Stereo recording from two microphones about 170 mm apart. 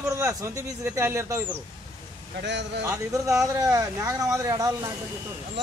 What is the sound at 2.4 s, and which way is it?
Speech, 90° right.